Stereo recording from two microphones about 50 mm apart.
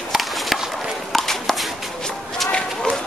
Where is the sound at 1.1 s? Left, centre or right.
Centre.